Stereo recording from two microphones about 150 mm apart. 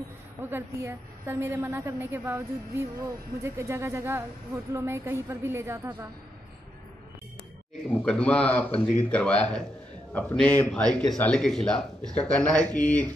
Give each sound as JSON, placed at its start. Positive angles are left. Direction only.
{"t": 0.4, "sound": "a woman's voice", "side_deg": -15}
{"t": 8.0, "sound": "a man's voice", "side_deg": 5}